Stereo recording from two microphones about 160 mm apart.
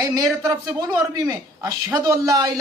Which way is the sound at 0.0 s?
20° right (ahead or behind).